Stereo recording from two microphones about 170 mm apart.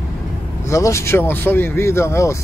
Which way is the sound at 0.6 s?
15° left (ahead or behind).